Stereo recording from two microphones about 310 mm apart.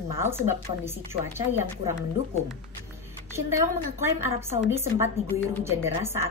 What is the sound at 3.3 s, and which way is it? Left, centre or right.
A woman's voice, centre.